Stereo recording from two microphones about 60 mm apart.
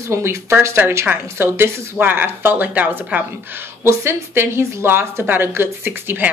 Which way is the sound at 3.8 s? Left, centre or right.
Right.